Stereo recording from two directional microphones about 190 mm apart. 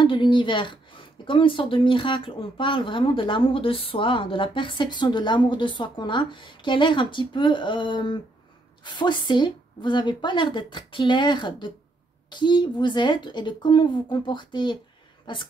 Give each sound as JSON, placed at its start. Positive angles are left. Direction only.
{"t": 0.0, "sound": "speech", "side_deg": 25}